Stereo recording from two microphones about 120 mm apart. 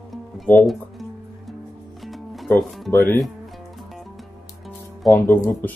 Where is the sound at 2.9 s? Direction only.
20° left (ahead or behind).